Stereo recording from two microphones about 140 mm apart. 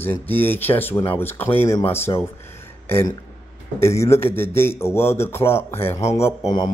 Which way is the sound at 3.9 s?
20° left (ahead or behind).